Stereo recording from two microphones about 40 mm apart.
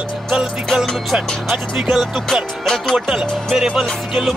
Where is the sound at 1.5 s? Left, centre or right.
Centre.